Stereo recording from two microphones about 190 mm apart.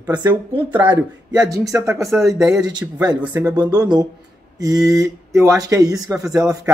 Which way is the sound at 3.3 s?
10° right (ahead or behind).